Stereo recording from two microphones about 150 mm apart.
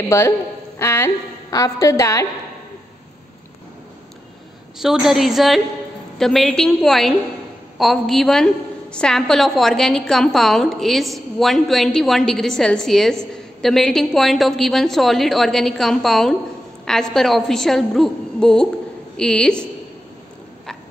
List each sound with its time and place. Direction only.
0.7 s a woman's voice: 15° left (ahead or behind)
4.7 s a woman's voice: 5° right (ahead or behind)